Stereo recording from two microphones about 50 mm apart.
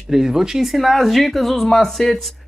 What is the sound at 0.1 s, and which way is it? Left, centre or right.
Speech, centre.